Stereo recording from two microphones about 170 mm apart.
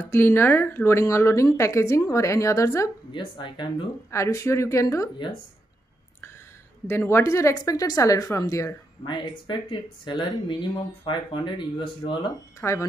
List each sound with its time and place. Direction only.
0.0 s speech: 15° left (ahead or behind)
4.1 s speech: 15° left (ahead or behind)
6.9 s speech: 15° left (ahead or behind)